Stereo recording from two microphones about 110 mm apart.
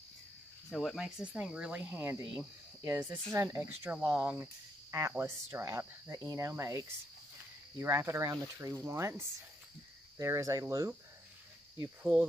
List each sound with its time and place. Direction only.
0.7 s speech: centre (ahead or behind); by 10.9 s 30° right (ahead or behind)
12.0 s speech: 15° right (ahead or behind)